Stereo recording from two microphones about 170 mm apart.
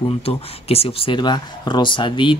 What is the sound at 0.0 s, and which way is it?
Speech, 35° left (ahead or behind).